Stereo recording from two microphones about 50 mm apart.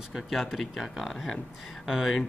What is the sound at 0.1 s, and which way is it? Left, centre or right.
Speech, centre.